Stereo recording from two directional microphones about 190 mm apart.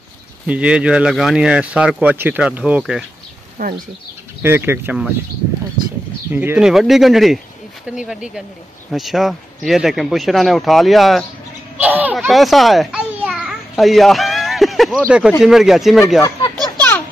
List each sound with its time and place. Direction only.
0.5 s speech: 5° right (ahead or behind)
3.6 s speech: 50° right (ahead or behind)
4.4 s speech: 10° right (ahead or behind)
6.3 s speech: 10° right (ahead or behind)
11.8 s a sound: 10° right (ahead or behind)
15.4 s speech: centre (ahead or behind)
16.2 s speech: 20° left (ahead or behind)
16.5 s a sound: 10° left (ahead or behind)